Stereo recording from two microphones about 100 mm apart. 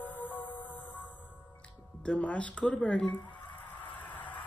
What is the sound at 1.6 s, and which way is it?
Speech, 10° left (ahead or behind).